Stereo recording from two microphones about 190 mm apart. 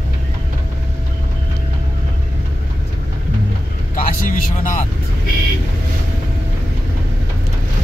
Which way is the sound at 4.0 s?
45° left (ahead or behind).